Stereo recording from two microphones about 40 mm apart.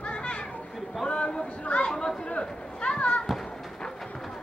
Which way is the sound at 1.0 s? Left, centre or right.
Left.